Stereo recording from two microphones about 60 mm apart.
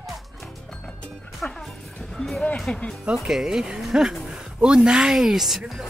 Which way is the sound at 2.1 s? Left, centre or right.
Centre.